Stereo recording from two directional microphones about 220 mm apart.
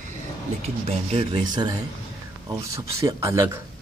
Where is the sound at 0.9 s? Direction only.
25° right (ahead or behind).